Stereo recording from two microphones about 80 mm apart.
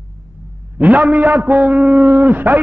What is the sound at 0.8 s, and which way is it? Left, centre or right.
A man's voice, centre.